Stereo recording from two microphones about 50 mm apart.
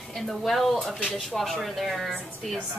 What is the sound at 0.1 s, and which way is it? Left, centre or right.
A woman's voice, centre.